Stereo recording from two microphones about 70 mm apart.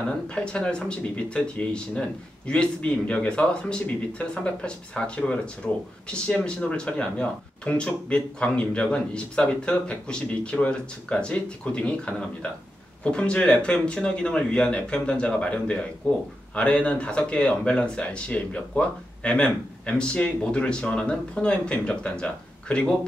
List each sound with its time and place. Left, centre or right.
0.3 s speech: centre